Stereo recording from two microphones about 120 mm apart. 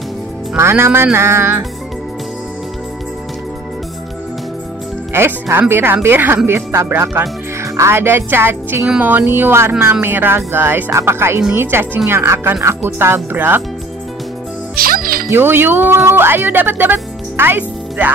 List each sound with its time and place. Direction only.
0.6 s speech: 20° right (ahead or behind)
5.1 s speech: 20° right (ahead or behind)
15.2 s speech: 20° right (ahead or behind)